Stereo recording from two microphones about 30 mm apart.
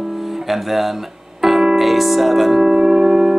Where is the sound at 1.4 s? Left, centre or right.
Centre.